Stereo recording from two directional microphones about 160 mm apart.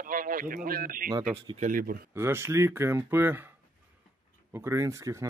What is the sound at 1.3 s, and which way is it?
Speech, 35° right (ahead or behind).